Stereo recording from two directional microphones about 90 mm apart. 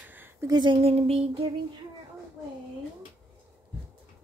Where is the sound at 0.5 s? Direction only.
70° right (ahead or behind); by 1.5 s 90° right.